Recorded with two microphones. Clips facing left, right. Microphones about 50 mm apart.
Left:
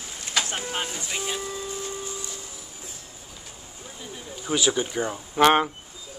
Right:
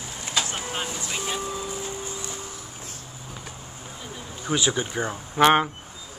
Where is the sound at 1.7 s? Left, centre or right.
Right.